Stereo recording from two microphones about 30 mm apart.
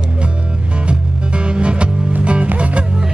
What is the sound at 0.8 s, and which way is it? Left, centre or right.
Music, right.